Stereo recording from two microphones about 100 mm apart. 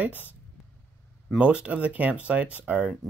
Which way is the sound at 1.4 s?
10° right (ahead or behind).